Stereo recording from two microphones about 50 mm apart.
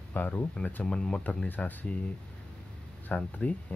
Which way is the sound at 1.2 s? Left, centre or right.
Left.